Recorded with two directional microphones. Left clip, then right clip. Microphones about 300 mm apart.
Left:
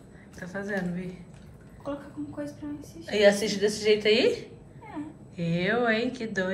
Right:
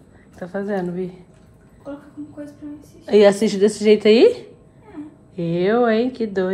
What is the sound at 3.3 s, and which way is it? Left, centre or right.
A woman's voice, centre.